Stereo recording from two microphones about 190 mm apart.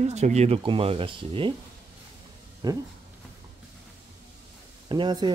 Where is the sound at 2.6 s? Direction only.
20° right (ahead or behind).